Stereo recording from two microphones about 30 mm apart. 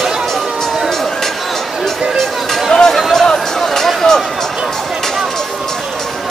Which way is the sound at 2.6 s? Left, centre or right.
Centre.